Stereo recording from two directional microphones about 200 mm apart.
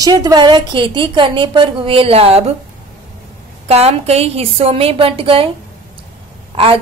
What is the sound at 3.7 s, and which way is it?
A woman's voice, 30° right (ahead or behind).